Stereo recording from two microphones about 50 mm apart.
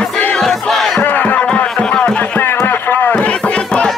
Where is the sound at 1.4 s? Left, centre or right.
Left.